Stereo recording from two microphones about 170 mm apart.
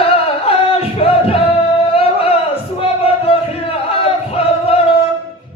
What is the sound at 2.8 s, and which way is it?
Chant, 35° left (ahead or behind).